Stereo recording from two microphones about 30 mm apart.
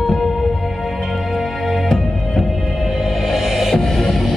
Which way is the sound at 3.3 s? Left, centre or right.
Centre.